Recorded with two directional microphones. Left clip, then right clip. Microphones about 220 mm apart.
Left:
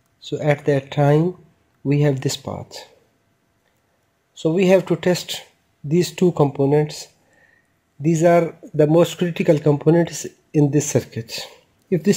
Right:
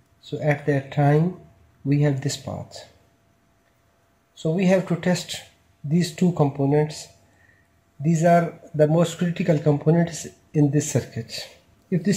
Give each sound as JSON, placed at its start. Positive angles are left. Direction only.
{"t": 0.2, "sound": "speech", "side_deg": 40}
{"t": 4.4, "sound": "speech", "side_deg": 35}